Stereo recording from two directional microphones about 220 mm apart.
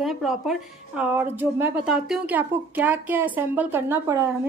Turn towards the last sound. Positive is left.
turn(degrees=-10)  # may be behind; listen again after turning